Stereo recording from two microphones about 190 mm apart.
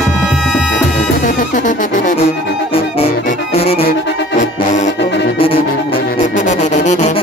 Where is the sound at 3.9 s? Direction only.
65° left (ahead or behind).